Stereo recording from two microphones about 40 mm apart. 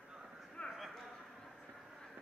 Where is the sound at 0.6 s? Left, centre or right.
Left.